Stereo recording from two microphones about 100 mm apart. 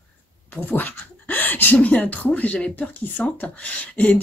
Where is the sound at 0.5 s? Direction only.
15° left (ahead or behind).